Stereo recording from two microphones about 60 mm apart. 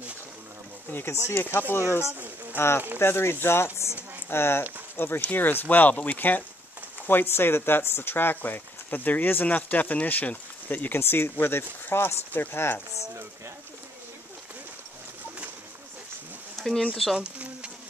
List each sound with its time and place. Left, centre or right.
1.2 s speech: left
2.5 s speech: left
16.5 s a sound: centre
16.9 s speech: centre
17.2 s bee: centre